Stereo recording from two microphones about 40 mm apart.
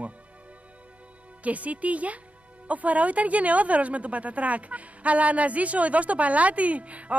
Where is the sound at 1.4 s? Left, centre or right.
Right.